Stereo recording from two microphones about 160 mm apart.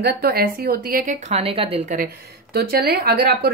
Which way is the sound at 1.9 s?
70° right (ahead or behind).